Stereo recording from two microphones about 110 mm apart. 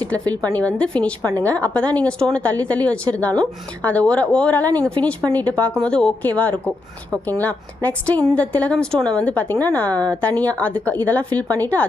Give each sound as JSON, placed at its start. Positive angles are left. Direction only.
{"t": 0.0, "sound": "a woman's voice", "side_deg": 10}
{"t": 11.4, "sound": "speech", "side_deg": -35}